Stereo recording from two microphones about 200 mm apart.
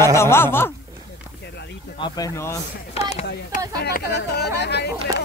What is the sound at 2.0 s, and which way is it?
Speech, 20° left (ahead or behind).